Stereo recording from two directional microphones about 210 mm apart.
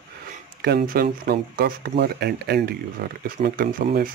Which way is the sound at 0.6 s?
50° right (ahead or behind).